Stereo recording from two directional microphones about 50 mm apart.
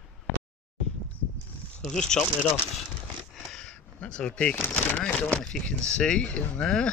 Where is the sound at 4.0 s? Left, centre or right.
Left.